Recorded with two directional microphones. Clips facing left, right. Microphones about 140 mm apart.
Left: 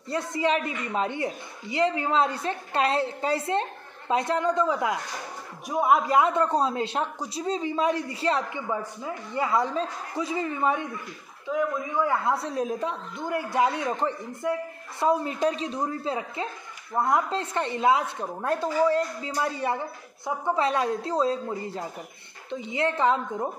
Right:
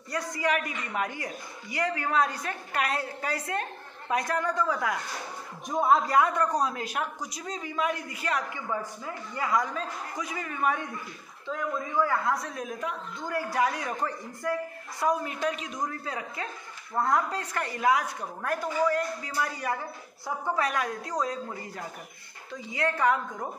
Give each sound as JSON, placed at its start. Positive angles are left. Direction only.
{"t": 0.1, "sound": "a woman's voice", "side_deg": 25}
{"t": 5.7, "sound": "a woman's voice", "side_deg": 10}
{"t": 11.4, "sound": "a woman's voice", "side_deg": 10}